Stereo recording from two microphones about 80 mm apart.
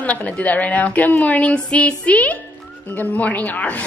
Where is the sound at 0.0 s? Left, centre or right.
Centre.